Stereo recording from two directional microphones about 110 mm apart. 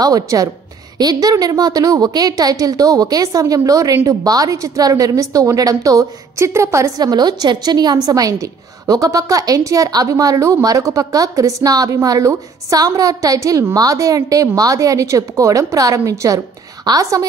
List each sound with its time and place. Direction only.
0.0 s a woman's voice: 35° right (ahead or behind)